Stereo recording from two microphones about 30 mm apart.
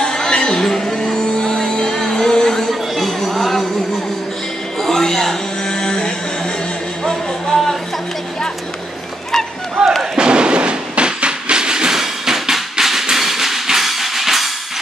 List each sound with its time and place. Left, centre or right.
0.0 s a sound: left
0.7 s music: centre
1.2 s vehicle: centre
1.9 s music: centre
2.7 s chatter: centre
5.0 s a sound: centre
9.8 s slam: centre
10.1 s train: right
11.9 s a sound: centre
13.1 s music: centre